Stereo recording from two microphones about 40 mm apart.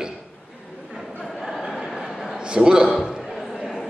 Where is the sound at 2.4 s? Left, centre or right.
Centre.